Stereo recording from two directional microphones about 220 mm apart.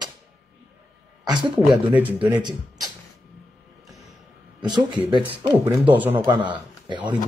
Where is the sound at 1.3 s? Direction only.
20° right (ahead or behind).